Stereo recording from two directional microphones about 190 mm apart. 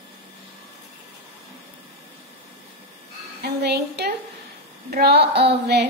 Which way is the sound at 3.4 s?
60° right (ahead or behind).